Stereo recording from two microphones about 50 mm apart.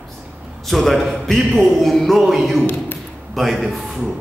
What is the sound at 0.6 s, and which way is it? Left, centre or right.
A man's voice, centre.